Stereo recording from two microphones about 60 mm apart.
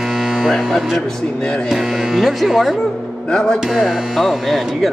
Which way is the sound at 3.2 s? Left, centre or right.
Centre.